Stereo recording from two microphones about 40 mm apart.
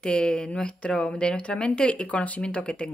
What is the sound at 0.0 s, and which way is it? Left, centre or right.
A woman's voice, left.